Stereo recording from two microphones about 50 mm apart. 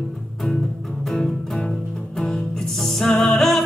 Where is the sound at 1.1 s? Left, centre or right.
Centre.